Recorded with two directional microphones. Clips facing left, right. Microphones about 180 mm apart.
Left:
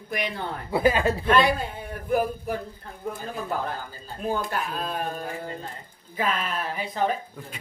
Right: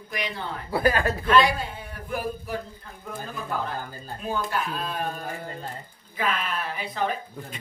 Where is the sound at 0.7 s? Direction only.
20° left (ahead or behind).